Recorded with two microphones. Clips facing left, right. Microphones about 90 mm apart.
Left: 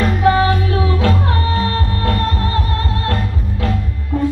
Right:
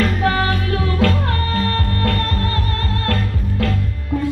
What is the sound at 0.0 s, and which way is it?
Music, 20° left (ahead or behind).